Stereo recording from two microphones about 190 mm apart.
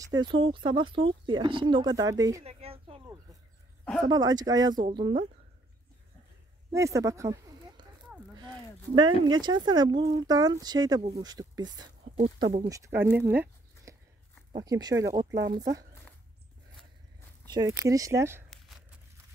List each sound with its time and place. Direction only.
0.1 s speech: 25° right (ahead or behind)
2.4 s speech: 30° right (ahead or behind)
4.1 s speech: 20° right (ahead or behind)
6.7 s speech: 15° right (ahead or behind)
8.4 s a sound: 25° right (ahead or behind)
9.3 s speech: 25° right (ahead or behind)
12.6 s speech: 15° right (ahead or behind)
13.2 s zipper: 15° right (ahead or behind)
14.5 s speech: 20° right (ahead or behind)
17.5 s speech: 15° right (ahead or behind)